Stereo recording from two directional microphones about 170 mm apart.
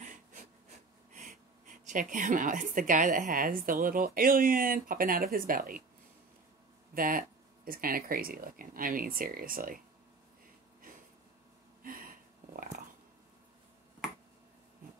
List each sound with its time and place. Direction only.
0.0 s speech: 45° right (ahead or behind)
6.9 s speech: 55° right (ahead or behind)
11.8 s a sound: 55° right (ahead or behind)